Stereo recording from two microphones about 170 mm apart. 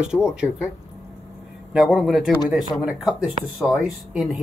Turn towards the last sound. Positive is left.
turn(degrees=0)  # may be behind; listen again after turning